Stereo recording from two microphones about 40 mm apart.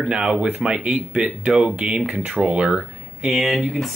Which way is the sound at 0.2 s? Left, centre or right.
Centre.